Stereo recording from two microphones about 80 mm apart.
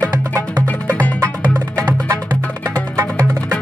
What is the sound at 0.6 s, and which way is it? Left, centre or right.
Music, left.